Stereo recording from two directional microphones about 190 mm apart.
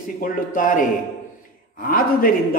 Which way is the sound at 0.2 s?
45° left (ahead or behind).